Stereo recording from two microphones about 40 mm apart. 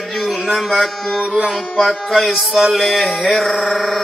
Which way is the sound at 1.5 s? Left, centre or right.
Centre.